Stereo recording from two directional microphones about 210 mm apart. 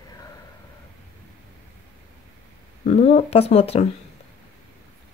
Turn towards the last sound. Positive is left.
turn(degrees=30)  # may be behind; listen again after turning